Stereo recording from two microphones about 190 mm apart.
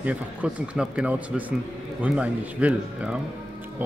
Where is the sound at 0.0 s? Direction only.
10° right (ahead or behind).